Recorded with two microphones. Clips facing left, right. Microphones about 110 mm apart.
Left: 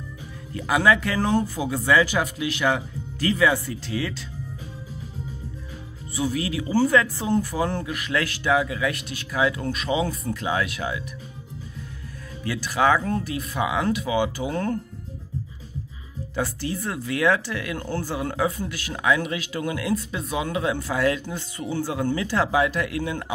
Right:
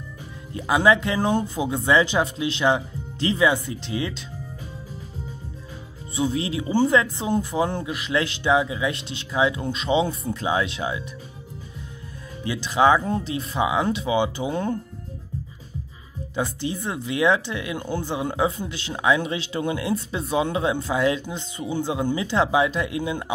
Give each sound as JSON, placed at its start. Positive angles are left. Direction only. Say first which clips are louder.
{"t": 0.5, "sound": "speech", "louder": "right 1 dB", "side_deg": -20}
{"t": 6.1, "sound": "speech", "louder": "right 1 dB", "side_deg": -25}
{"t": 12.4, "sound": "speech", "louder": "right 3 dB", "side_deg": -20}
{"t": 16.3, "sound": "speech", "louder": "right 1 dB", "side_deg": -20}